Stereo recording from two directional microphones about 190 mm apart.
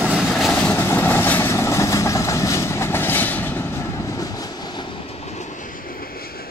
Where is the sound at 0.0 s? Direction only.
5° right (ahead or behind).